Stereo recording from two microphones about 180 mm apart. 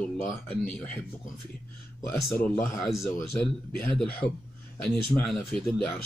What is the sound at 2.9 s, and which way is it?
Speech, centre (ahead or behind).